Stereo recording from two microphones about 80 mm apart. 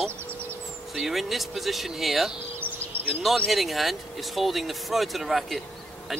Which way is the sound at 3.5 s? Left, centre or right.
Centre.